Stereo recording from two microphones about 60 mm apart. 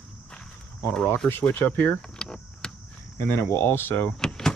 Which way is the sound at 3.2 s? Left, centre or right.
Left.